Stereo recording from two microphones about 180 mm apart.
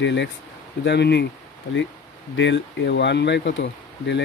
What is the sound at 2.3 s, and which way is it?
Speech, 80° left.